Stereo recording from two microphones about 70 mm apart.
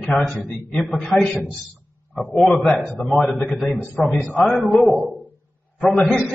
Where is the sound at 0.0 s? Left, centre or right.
Centre.